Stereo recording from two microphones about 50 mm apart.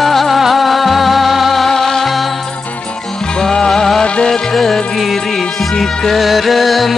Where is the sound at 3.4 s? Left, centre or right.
Centre.